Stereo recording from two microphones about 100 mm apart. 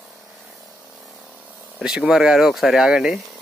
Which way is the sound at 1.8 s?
5° right (ahead or behind).